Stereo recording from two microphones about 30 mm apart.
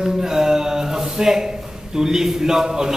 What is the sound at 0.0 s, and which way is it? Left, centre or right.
Speech, centre.